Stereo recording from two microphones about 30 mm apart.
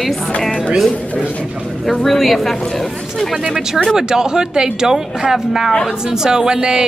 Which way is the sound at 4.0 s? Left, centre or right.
Right.